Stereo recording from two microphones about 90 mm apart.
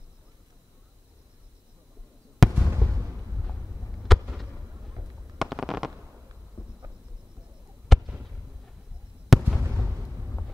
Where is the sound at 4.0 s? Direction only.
Centre (ahead or behind).